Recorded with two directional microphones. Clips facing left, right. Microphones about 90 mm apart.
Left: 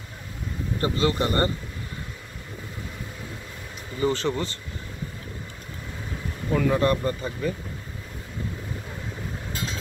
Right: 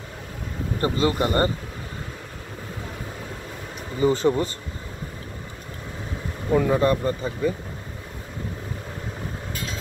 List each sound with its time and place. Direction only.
0.7 s speech: 30° right (ahead or behind)
4.0 s speech: 15° right (ahead or behind)
6.5 s speech: 15° right (ahead or behind)